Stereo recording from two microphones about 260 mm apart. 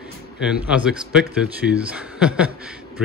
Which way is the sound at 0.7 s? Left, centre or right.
Centre.